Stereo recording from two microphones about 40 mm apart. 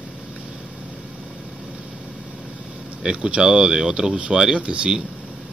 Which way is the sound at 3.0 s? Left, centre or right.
Right.